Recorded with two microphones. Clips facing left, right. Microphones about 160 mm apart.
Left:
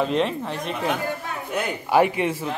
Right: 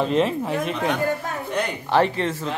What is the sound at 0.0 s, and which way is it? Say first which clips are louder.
Speech: right 2 dB; centre (ahead or behind).